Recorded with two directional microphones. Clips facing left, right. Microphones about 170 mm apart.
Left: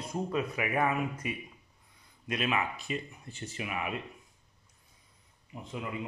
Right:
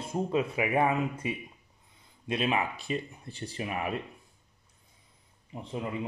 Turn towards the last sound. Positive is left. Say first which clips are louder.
# right 4 dB
turn(degrees=-30)  # may be behind; listen again after turning